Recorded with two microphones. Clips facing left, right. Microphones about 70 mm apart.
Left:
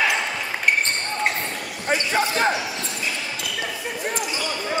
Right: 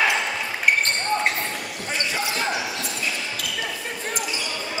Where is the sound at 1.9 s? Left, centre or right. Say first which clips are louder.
Left 6 dB; left.